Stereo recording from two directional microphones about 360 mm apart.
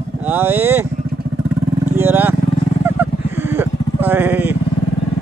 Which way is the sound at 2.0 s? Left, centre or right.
Centre.